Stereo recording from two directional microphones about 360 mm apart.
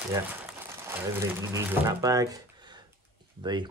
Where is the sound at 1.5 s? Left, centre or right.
Centre.